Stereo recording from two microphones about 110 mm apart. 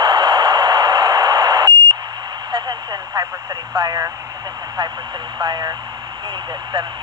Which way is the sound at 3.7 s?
35° right (ahead or behind).